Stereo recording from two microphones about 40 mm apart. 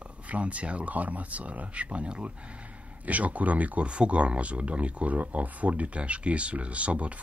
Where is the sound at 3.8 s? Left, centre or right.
Right.